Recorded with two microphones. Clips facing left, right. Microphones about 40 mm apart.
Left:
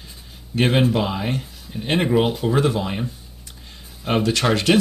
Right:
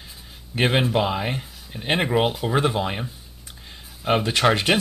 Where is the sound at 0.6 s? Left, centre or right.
Centre.